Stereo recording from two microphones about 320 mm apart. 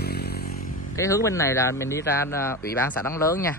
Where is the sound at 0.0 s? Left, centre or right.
Left.